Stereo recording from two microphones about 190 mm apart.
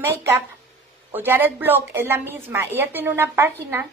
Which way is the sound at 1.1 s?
10° right (ahead or behind).